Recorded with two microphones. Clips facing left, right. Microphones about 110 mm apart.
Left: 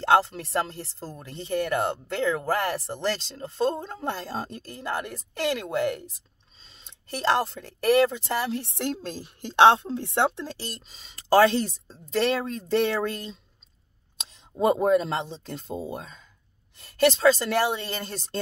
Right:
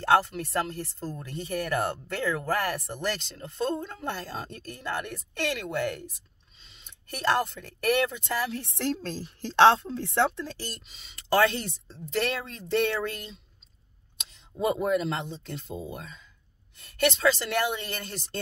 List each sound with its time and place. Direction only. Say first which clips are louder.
0.0 s speech: left 2 dB; 30° left (ahead or behind)
10.9 s speech: left 5 dB; 40° left (ahead or behind)
14.6 s speech: left 5 dB; 35° left (ahead or behind)